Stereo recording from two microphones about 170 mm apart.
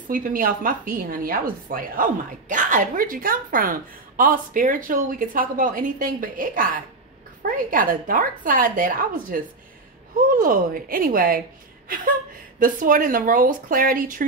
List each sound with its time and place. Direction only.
0.1 s a woman's voice: 55° right (ahead or behind)
12.5 s a woman's voice: 50° right (ahead or behind)